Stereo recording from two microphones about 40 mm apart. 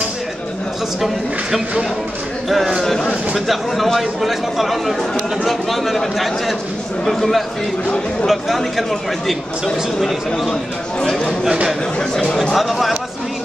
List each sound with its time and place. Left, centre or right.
2.8 s speech: centre
3.3 s speech: centre
12.0 s speech: centre
12.5 s speech: centre